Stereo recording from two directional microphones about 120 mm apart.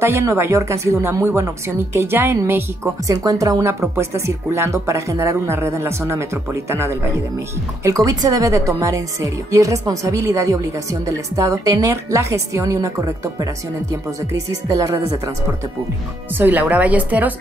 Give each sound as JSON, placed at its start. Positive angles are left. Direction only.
{"t": 0.0, "sound": "a woman's voice", "side_deg": -20}
{"t": 14.5, "sound": "a woman's voice", "side_deg": -25}
{"t": 16.3, "sound": "a woman's voice", "side_deg": -15}